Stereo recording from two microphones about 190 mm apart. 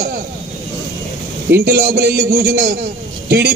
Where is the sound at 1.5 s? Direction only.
55° right (ahead or behind).